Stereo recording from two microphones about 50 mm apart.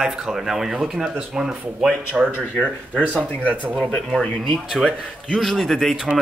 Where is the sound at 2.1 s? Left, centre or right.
Right.